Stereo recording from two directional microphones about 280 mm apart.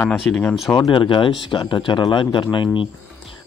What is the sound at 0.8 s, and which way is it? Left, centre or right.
Speech, centre.